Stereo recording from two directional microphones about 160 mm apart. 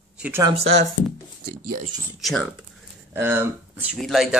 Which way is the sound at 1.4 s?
65° right (ahead or behind).